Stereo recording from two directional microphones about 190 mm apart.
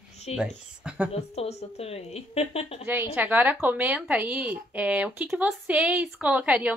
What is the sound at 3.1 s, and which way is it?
Speech, 10° right (ahead or behind).